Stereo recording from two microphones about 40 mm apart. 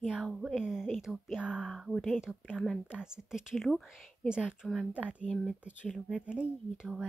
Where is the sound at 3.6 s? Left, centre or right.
Centre.